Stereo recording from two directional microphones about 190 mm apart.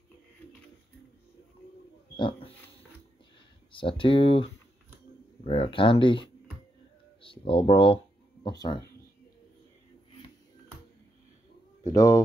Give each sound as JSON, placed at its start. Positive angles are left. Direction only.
{"t": 2.1, "sound": "pig", "side_deg": 25}
{"t": 3.7, "sound": "speech", "side_deg": 25}
{"t": 11.8, "sound": "speech", "side_deg": 20}